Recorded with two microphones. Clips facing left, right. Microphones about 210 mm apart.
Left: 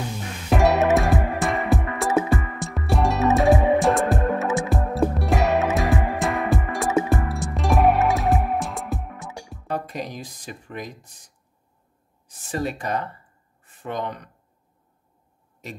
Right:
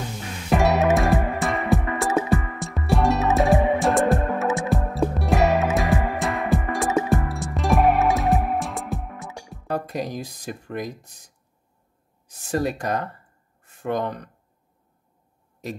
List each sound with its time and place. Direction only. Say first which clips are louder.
0.5 s music: left 1 dB; centre (ahead or behind)
9.7 s speech: right 2 dB; 45° right (ahead or behind)
12.4 s speech: right 3 dB; 45° right (ahead or behind)